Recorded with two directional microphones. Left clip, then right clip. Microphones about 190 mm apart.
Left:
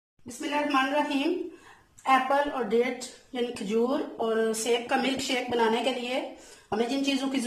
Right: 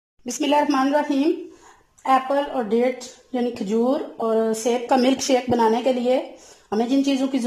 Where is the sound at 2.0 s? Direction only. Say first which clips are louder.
Right 4 dB; 25° right (ahead or behind).